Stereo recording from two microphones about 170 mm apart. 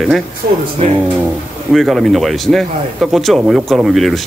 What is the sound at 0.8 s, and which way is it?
Speech, 35° right (ahead or behind).